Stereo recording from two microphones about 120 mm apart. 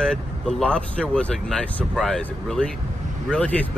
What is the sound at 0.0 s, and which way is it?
Speech, 5° left (ahead or behind).